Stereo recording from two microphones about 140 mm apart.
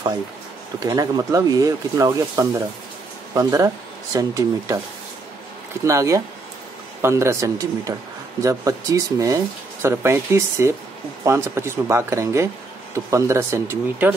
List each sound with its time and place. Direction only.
0.7 s speech: 25° right (ahead or behind)
5.9 s speech: 20° right (ahead or behind)